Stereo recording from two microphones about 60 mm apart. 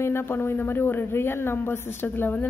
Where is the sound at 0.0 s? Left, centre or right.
Left.